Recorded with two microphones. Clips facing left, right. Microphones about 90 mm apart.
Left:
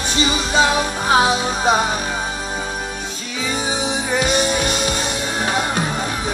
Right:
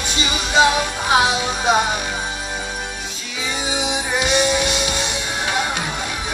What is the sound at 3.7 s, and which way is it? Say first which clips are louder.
Music: even; 40° left (ahead or behind).